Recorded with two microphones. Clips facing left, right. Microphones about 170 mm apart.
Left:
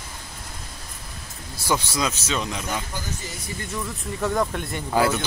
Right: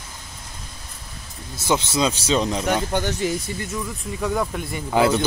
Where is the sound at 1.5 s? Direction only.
20° right (ahead or behind).